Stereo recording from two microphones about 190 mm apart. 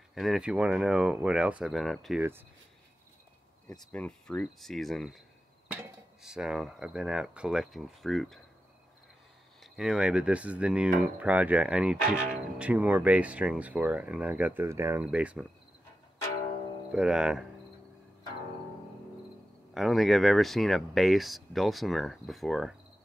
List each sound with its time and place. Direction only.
0.1 s speech: centre (ahead or behind)
3.9 s speech: 5° left (ahead or behind)
9.6 s speech: centre (ahead or behind)
16.9 s speech: 5° right (ahead or behind)
19.7 s speech: centre (ahead or behind)